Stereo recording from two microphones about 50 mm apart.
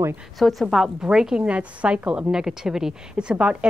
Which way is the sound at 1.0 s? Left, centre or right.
Centre.